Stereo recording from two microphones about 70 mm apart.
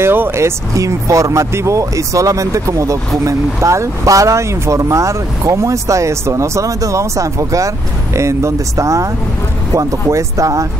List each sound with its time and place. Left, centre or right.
0.0 s speech: right
0.7 s speech: right